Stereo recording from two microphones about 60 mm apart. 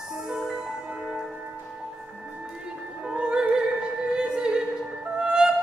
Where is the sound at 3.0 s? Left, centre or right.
Centre.